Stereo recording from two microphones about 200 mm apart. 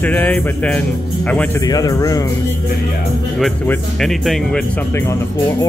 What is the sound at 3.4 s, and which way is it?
Speech, centre (ahead or behind).